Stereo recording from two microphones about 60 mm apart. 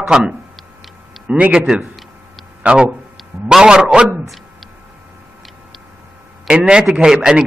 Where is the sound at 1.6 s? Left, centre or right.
Centre.